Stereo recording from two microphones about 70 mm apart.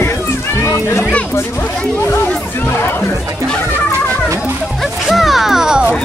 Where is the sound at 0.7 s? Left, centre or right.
Left.